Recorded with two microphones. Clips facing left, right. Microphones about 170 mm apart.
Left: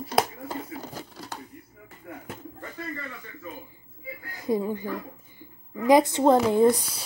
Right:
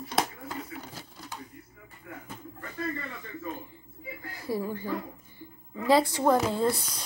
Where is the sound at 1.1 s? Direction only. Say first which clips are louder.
Left 4 dB; 75° left (ahead or behind).